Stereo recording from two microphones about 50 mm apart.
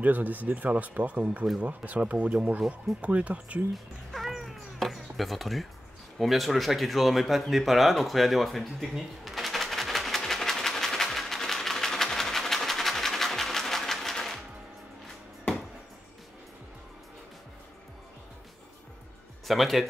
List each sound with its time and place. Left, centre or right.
0.0 s speech: right
3.7 s cat: centre
6.1 s a sound: centre
19.4 s speech: centre